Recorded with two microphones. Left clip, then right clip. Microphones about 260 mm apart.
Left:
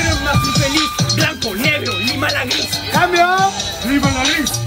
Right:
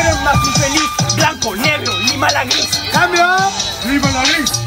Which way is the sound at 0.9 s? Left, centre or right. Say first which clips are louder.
Right 3 dB; centre.